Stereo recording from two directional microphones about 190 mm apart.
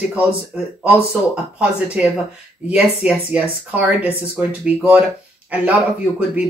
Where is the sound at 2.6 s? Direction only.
5° right (ahead or behind).